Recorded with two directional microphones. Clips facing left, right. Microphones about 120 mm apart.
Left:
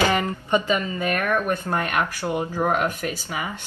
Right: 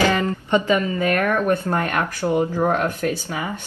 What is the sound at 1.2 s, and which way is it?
Speech, 20° right (ahead or behind).